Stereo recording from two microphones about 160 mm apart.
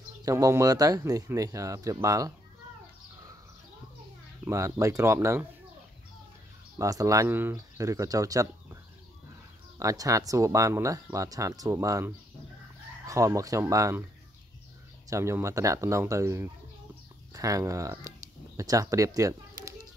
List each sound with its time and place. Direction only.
0.2 s speech: 20° right (ahead or behind)
4.5 s speech: 20° right (ahead or behind)
6.8 s speech: 20° right (ahead or behind)
9.8 s speech: 20° right (ahead or behind)
15.0 s speech: 15° right (ahead or behind)